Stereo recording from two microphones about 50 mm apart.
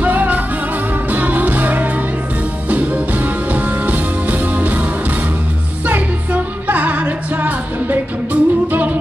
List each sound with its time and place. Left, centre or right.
0.0 s music: right
5.9 s music: right